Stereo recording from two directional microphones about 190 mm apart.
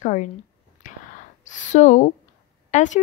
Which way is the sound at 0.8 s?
40° left (ahead or behind).